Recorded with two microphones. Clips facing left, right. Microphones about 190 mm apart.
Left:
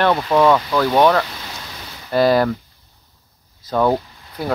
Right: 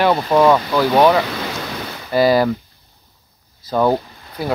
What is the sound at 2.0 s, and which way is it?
Speech, 5° right (ahead or behind).